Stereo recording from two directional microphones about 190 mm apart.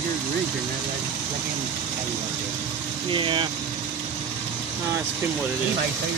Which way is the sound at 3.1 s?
25° right (ahead or behind).